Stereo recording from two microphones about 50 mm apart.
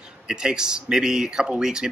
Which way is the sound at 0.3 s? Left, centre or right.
Centre.